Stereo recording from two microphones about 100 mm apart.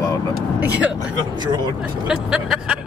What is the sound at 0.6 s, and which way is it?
Speech, 15° right (ahead or behind).